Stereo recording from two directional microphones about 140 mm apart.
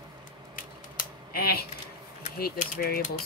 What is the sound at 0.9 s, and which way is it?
Typing, 90° left.